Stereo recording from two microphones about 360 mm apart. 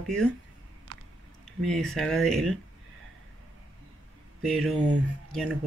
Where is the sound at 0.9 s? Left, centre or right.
Right.